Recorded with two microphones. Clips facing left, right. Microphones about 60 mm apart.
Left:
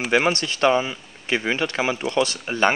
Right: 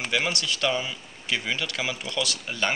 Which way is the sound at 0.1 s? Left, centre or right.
Left.